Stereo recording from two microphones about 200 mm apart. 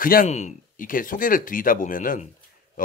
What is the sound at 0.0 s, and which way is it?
Speech, 45° left (ahead or behind).